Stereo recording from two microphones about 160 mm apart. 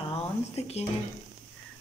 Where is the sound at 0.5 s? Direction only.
40° left (ahead or behind).